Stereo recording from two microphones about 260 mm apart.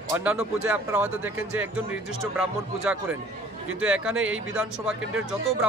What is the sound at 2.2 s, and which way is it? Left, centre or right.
Speech, centre.